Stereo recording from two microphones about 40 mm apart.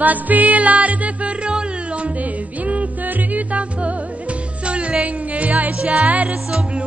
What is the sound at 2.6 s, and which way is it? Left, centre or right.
Music, right.